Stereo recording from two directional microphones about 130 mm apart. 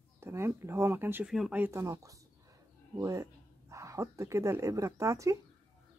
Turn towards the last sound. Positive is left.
turn(degrees=-25)  # may be behind; listen again after turning